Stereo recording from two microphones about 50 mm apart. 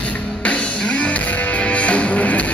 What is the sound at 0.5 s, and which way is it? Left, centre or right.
Music, left.